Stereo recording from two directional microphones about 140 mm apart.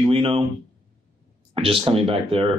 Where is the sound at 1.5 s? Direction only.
40° right (ahead or behind).